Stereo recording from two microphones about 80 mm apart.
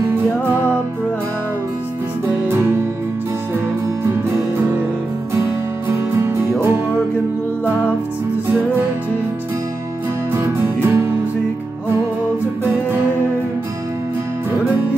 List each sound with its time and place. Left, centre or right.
2.4 s music: right
5.9 s music: right
10.3 s music: right